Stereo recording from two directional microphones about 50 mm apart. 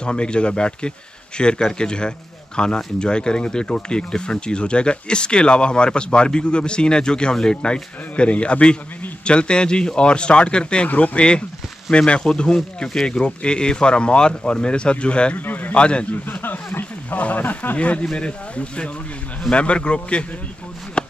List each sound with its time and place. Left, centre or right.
0.0 s a man's voice: centre
15.3 s speech: left
15.8 s a man's voice: left
16.3 s a sound: left
17.2 s speech: left
17.7 s a man's voice: left
21.0 s a sound: left